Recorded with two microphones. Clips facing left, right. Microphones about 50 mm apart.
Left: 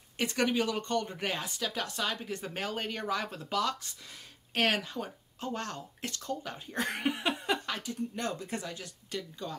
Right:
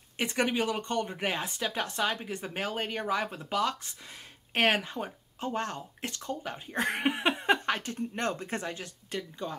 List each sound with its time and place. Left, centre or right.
0.2 s speech: right